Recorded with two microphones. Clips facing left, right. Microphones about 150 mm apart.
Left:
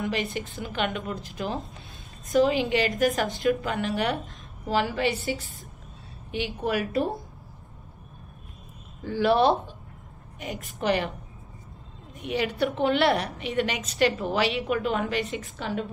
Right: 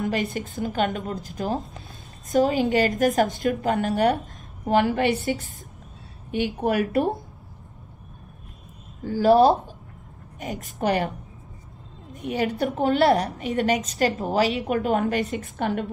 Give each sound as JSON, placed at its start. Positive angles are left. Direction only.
{"t": 0.0, "sound": "a woman's voice", "side_deg": -45}
{"t": 9.0, "sound": "a woman's voice", "side_deg": -40}
{"t": 12.1, "sound": "a sound", "side_deg": -45}
{"t": 12.5, "sound": "a woman's voice", "side_deg": -45}